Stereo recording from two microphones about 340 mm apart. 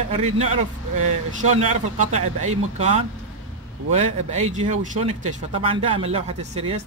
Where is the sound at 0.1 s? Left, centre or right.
Centre.